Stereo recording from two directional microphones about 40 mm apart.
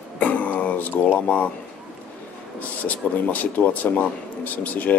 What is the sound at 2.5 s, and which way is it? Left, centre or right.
A man's voice, left.